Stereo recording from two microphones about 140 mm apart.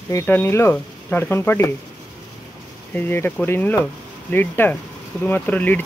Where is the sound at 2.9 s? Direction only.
15° left (ahead or behind).